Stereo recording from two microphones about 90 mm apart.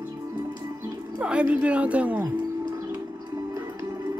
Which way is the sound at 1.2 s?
15° right (ahead or behind).